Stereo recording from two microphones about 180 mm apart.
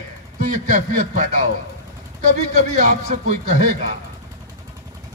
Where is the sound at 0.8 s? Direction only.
45° right (ahead or behind).